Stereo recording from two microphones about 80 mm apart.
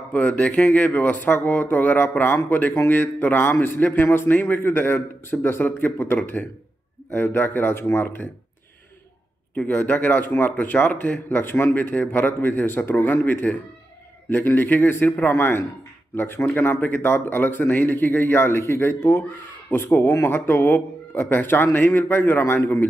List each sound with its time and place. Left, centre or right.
0.1 s speech: centre
9.7 s speech: left